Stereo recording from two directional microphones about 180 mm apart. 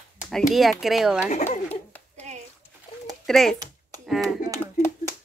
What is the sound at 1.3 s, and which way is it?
Speech, 40° left (ahead or behind).